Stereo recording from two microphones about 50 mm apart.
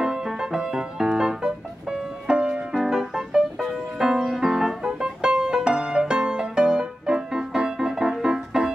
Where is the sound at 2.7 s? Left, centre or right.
Centre.